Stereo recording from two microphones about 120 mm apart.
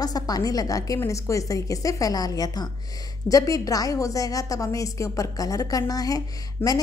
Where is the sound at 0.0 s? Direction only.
30° left (ahead or behind).